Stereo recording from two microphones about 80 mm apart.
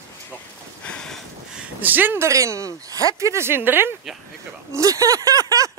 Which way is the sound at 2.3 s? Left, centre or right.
Right.